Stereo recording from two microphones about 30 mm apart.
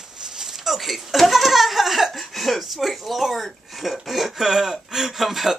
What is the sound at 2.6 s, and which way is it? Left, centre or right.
Speech, centre.